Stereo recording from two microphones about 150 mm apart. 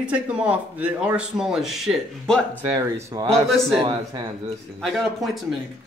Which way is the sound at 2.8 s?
25° right (ahead or behind).